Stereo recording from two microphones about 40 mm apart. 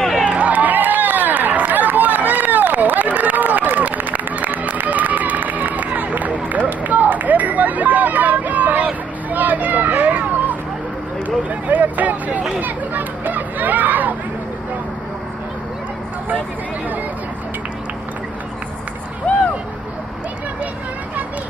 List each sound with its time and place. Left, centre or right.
0.4 s run: right
6.8 s hubbub: right
9.3 s a sound: right
11.2 s chatter: right
19.2 s vehicle: left